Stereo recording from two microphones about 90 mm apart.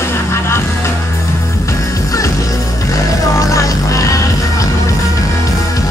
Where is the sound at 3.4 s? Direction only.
35° left (ahead or behind).